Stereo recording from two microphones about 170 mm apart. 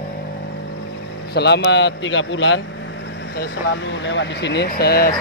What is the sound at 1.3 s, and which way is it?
A man's voice, 80° left.